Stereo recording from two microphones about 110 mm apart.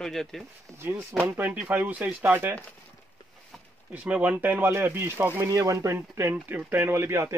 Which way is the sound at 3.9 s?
10° right (ahead or behind).